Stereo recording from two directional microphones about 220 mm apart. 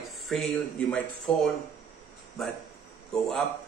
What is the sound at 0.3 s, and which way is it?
Speech, centre (ahead or behind).